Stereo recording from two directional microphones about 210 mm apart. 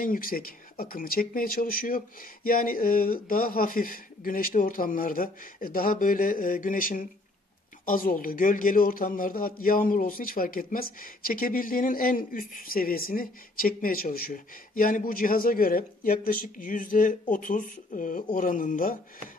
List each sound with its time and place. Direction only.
0.0 s speech: 40° left (ahead or behind)